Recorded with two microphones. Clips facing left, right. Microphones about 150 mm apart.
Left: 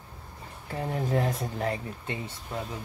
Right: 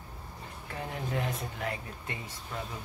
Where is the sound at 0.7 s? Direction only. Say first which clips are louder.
Left 7 dB; 35° left (ahead or behind).